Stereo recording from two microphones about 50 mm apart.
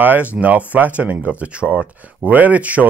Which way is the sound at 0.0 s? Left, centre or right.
Right.